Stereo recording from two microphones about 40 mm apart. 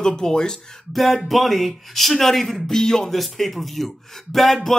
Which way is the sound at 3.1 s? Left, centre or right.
Centre.